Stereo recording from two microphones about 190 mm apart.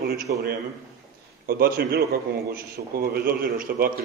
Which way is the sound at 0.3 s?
50° right (ahead or behind).